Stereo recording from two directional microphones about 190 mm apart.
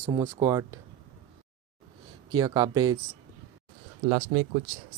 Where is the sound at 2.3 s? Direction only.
20° right (ahead or behind).